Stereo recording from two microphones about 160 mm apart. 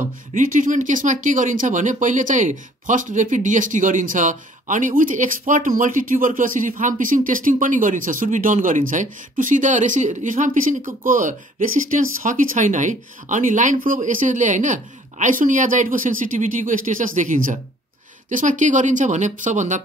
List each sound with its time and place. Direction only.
0.3 s speech: 55° right (ahead or behind)